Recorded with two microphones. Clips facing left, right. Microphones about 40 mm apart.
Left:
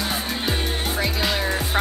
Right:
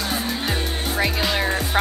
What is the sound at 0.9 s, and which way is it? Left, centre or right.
Music, centre.